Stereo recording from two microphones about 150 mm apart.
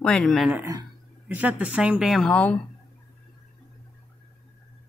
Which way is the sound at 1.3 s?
10° right (ahead or behind).